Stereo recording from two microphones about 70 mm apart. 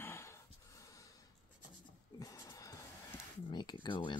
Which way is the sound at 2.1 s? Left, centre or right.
Left.